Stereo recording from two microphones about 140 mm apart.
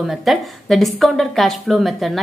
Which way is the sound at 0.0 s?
Centre (ahead or behind).